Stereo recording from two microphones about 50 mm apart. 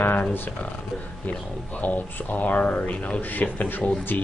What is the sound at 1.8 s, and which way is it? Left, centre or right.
Speech, left.